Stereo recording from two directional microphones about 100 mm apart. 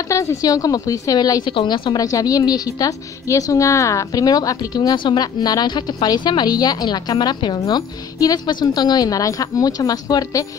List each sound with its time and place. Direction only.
0.1 s a woman's voice: 30° left (ahead or behind)